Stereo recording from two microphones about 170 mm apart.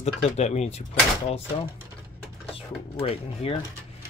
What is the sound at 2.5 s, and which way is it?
Speech, 35° left (ahead or behind).